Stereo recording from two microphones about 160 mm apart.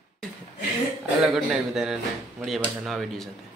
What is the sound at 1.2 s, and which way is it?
Speech, 5° right (ahead or behind).